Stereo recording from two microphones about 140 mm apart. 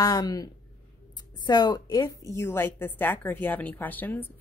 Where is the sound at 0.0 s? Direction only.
25° left (ahead or behind).